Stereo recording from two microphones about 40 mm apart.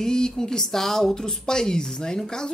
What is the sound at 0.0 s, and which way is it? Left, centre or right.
A woman's voice, centre.